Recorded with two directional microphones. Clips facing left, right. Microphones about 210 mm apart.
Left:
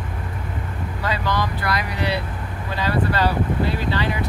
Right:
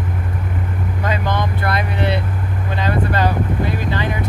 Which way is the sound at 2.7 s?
20° right (ahead or behind).